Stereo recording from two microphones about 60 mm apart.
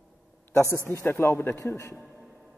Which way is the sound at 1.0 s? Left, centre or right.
Left.